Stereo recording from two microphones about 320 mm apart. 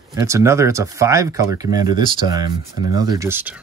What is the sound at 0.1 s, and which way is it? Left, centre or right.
Speech, centre.